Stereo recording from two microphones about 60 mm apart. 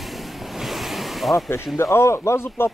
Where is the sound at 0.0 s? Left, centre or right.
Centre.